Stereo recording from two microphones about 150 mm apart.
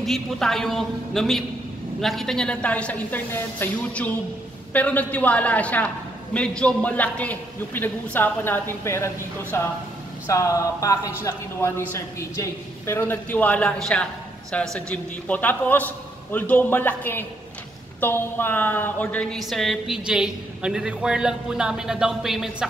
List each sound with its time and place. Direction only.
0.0 s a woman's voice: centre (ahead or behind)